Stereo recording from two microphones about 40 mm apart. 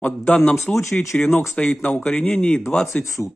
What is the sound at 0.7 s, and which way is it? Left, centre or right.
Speech, left.